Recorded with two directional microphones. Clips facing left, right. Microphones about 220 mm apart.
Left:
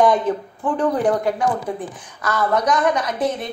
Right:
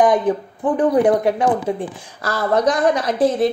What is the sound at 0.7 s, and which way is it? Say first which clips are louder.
A woman's voice: right 4 dB; 20° right (ahead or behind).